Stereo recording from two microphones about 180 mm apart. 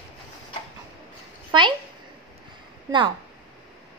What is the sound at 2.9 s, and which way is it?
Speech, 25° right (ahead or behind).